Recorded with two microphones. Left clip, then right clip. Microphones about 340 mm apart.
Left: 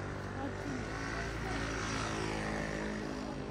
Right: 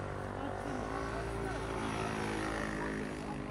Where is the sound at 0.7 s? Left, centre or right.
Centre.